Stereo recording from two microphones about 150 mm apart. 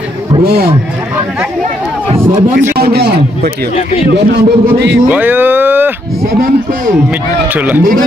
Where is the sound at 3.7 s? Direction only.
45° left (ahead or behind).